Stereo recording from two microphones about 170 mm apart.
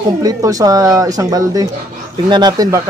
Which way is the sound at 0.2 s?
20° right (ahead or behind).